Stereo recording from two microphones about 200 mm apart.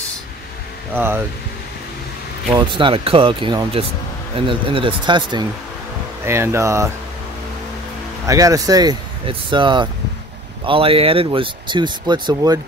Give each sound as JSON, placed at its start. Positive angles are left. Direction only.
{"t": 0.9, "sound": "speech", "side_deg": -10}
{"t": 2.5, "sound": "speech", "side_deg": -25}
{"t": 6.2, "sound": "speech", "side_deg": -15}
{"t": 8.3, "sound": "speech", "side_deg": -15}